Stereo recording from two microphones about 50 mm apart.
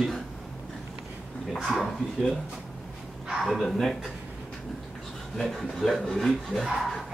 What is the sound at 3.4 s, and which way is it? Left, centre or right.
Speech, centre.